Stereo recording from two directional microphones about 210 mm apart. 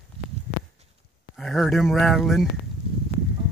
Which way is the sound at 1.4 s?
Centre (ahead or behind).